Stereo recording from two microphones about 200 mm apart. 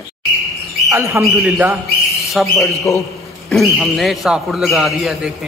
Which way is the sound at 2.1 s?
Centre (ahead or behind).